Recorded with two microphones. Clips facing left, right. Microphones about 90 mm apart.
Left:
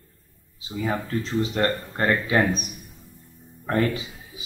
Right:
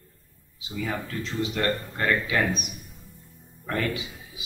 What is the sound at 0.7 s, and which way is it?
Speech, 30° left (ahead or behind).